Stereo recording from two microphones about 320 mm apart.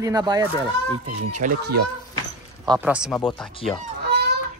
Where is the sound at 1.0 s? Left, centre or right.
Right.